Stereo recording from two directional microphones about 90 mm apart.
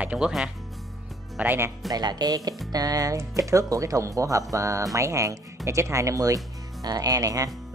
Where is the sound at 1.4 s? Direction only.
20° right (ahead or behind).